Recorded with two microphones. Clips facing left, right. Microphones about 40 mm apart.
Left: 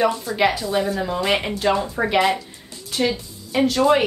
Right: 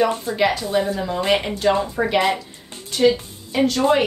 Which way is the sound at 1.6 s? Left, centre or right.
Centre.